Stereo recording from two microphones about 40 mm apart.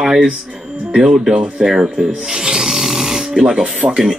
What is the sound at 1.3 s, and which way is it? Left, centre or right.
Speech, right.